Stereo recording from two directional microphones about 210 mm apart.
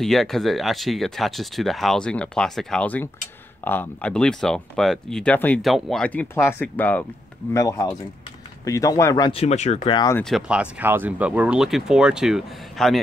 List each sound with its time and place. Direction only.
0.0 s speech: centre (ahead or behind); by 9.9 s 30° left (ahead or behind)
9.9 s speech: 15° left (ahead or behind)
10.3 s speech: 5° right (ahead or behind)